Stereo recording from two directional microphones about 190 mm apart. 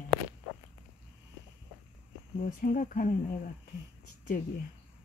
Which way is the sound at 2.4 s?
45° left (ahead or behind).